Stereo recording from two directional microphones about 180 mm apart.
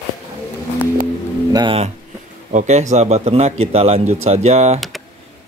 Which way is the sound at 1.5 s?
30° right (ahead or behind).